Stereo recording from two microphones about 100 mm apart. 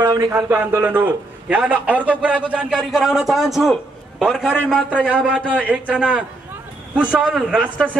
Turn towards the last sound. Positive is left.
turn(degrees=-5)  # may be behind; listen again after turning